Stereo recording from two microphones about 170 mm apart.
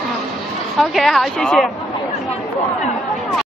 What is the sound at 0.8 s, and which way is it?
Speech, centre (ahead or behind).